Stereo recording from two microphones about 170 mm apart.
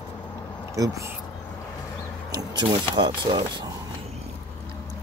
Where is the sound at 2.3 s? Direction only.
25° right (ahead or behind).